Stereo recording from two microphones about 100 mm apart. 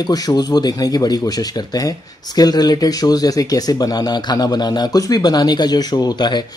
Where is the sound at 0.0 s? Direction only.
40° left (ahead or behind).